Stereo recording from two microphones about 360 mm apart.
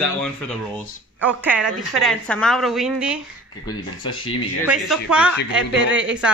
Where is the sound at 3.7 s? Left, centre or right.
Centre.